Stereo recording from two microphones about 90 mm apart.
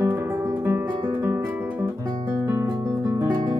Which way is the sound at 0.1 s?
25° right (ahead or behind).